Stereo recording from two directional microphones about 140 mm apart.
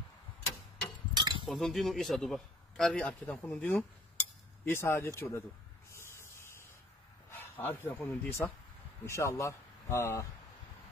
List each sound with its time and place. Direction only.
1.1 s cutlery: 35° right (ahead or behind)
1.4 s speech: centre (ahead or behind); by 5.4 s 20° left (ahead or behind)
5.9 s a sound: 20° left (ahead or behind)
7.2 s speech: 15° left (ahead or behind)